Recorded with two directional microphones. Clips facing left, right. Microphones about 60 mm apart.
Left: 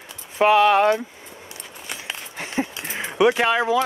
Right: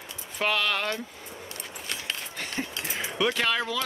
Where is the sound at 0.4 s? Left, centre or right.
Left.